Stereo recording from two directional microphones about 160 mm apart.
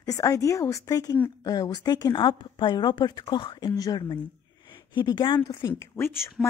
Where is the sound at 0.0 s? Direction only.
20° left (ahead or behind).